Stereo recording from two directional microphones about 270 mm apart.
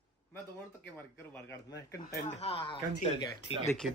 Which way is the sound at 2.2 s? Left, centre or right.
Left.